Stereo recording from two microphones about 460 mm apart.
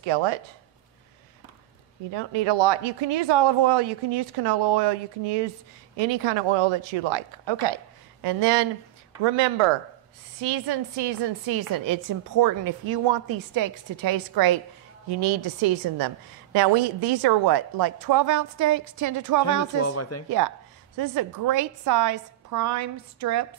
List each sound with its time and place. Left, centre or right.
0.0 s speech: right
2.0 s speech: right
5.9 s speech: right
10.7 s a woman's voice: right
19.4 s speech: left
20.2 s a woman's voice: right